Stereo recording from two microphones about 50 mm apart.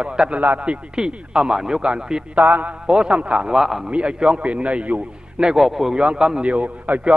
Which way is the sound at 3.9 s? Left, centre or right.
Right.